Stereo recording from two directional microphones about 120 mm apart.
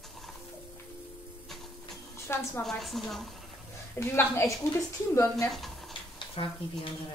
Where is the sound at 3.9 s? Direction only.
20° left (ahead or behind).